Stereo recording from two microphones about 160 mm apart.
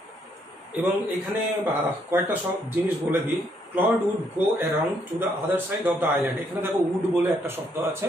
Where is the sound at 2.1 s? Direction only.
15° right (ahead or behind).